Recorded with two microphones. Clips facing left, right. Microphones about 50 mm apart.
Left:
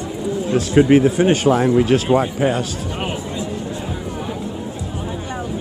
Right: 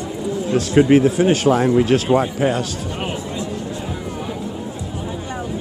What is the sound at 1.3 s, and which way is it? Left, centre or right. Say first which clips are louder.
Speech: even; centre.